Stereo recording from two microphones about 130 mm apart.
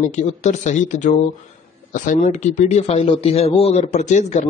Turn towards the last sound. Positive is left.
turn(degrees=65)  # may be behind; listen again after turning